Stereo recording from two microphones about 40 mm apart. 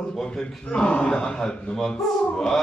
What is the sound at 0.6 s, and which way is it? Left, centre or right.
A man's voice, left.